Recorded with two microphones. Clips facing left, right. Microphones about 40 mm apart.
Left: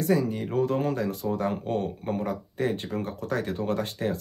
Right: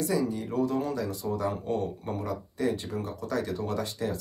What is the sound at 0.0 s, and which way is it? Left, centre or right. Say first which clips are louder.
Speech: left 3 dB; left.